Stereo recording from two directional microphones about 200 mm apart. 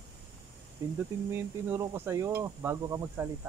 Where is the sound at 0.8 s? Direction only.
15° right (ahead or behind).